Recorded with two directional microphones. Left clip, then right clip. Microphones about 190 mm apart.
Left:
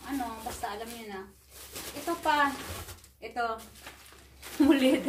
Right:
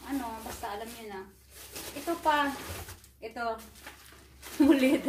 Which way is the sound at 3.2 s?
Centre (ahead or behind).